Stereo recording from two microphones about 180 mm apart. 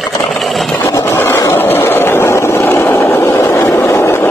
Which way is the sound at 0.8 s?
15° left (ahead or behind).